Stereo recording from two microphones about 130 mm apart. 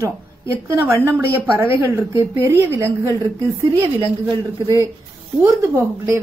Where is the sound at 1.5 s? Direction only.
20° right (ahead or behind).